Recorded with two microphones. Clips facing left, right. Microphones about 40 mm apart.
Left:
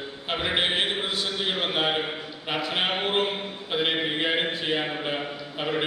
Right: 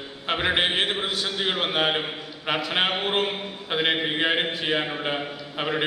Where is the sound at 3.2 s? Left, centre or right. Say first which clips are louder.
Even; centre.